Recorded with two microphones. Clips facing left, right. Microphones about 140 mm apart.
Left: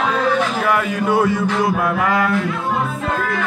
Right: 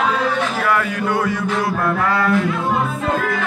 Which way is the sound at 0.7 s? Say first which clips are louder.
Left 1 dB; 20° left (ahead or behind).